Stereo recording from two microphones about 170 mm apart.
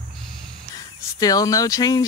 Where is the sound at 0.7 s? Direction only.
20° left (ahead or behind).